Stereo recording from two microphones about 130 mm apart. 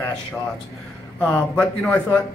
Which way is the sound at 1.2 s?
10° left (ahead or behind).